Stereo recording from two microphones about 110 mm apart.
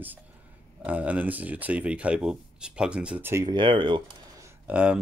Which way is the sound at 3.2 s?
25° right (ahead or behind).